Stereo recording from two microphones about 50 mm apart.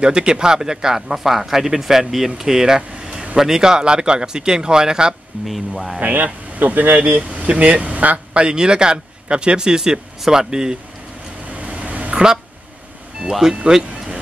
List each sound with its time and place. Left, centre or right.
0.0 s speech: centre
5.5 s speech: centre
5.9 s speech: right; by 10.8 s centre
11.5 s vehicle: right
13.3 s speech: centre
13.7 s a sound: centre